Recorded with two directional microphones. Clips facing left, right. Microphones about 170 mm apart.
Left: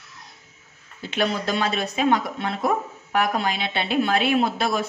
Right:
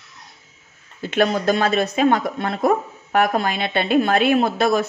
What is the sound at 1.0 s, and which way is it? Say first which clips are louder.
Speech: right 6 dB; 50° right (ahead or behind).